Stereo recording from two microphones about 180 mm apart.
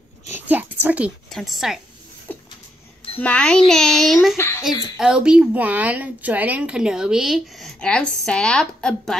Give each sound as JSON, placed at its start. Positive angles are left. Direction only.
{"t": 0.5, "sound": "a sound", "side_deg": -10}
{"t": 0.8, "sound": "a woman's voice", "side_deg": -5}
{"t": 2.3, "sound": "a sound", "side_deg": 10}
{"t": 3.2, "sound": "a woman's voice", "side_deg": 5}
{"t": 4.4, "sound": "speech", "side_deg": 15}
{"t": 4.9, "sound": "a woman's voice", "side_deg": -5}